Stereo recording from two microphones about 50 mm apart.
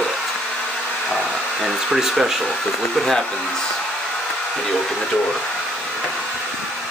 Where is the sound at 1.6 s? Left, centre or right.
Centre.